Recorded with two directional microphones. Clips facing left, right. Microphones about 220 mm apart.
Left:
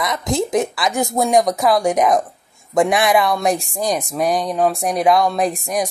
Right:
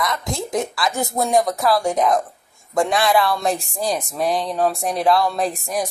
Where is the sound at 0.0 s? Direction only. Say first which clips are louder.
Left 5 dB; 20° left (ahead or behind).